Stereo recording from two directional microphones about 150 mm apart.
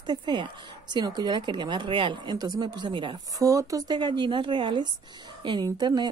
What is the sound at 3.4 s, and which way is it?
A woman's voice, 20° right (ahead or behind).